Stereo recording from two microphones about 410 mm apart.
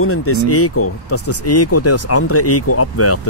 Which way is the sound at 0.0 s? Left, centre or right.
Left.